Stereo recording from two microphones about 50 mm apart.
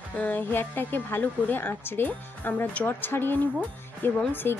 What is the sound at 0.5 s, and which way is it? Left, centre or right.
Speech, left.